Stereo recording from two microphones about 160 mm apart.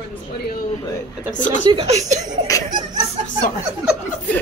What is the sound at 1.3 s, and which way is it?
Speech, 50° left (ahead or behind).